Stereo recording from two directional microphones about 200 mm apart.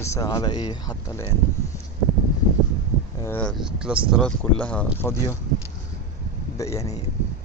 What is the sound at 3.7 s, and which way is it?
Speech, 5° right (ahead or behind).